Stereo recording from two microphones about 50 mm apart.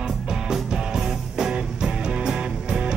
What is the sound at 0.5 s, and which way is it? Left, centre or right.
Music, centre.